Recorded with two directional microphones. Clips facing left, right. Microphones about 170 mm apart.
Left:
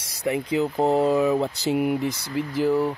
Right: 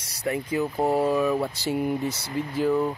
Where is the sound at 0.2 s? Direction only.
15° left (ahead or behind).